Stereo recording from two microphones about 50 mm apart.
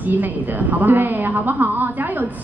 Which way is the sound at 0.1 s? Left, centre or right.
Right.